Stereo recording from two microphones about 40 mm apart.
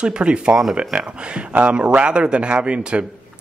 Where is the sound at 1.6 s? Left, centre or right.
Right.